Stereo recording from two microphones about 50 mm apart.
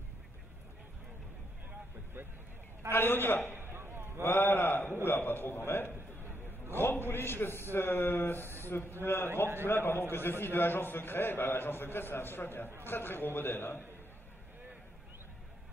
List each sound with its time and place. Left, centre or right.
2.9 s a man's voice: left
3.5 s a sound: right
4.2 s a man's voice: left